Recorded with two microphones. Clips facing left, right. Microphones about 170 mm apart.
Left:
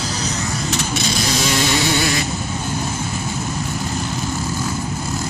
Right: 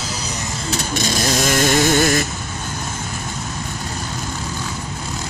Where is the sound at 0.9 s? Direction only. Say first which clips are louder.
Right 4 dB; 45° right (ahead or behind).